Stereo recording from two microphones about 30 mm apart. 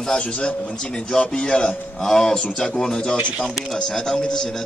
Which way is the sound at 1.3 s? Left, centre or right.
Left.